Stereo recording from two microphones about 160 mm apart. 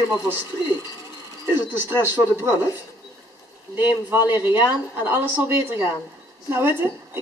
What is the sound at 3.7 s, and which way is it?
A woman's voice, 10° right (ahead or behind).